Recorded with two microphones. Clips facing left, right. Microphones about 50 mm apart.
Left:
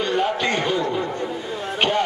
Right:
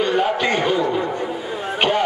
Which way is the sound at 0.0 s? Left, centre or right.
Centre.